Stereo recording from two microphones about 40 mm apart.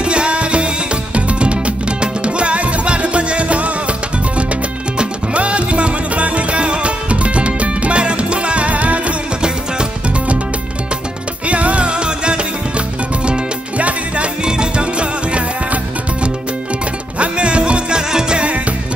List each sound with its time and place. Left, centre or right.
0.0 s music: right
4.9 s music: right
11.4 s music: right